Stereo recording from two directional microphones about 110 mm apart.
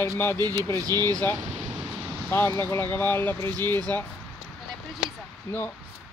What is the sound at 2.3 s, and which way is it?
Speech, 20° left (ahead or behind).